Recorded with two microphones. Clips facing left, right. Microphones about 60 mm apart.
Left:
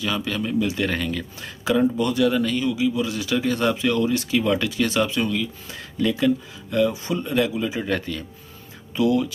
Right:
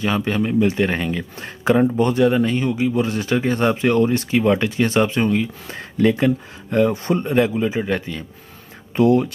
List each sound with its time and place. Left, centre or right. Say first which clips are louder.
0.0 s speech: right 5 dB; right
1.6 s speech: right 4 dB; right
2.7 s speech: right 3 dB; right
7.8 s speech: right 2 dB; centre
8.9 s speech: right 5 dB; right